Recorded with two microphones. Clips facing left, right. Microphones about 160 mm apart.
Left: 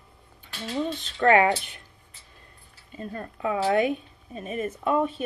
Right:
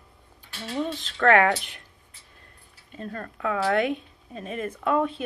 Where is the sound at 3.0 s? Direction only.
10° left (ahead or behind).